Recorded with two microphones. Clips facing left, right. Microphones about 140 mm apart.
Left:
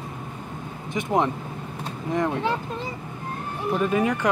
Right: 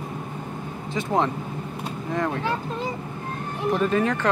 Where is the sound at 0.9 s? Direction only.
15° left (ahead or behind).